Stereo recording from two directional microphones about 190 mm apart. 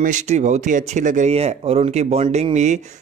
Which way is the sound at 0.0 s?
40° right (ahead or behind).